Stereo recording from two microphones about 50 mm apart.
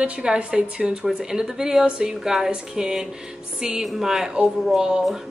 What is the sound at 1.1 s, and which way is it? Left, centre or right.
A woman's voice, centre.